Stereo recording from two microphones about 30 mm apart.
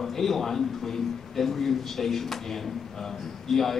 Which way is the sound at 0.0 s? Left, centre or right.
Centre.